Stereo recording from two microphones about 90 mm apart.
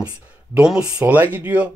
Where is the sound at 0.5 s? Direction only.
10° right (ahead or behind).